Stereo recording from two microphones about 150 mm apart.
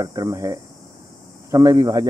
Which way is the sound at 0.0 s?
20° right (ahead or behind).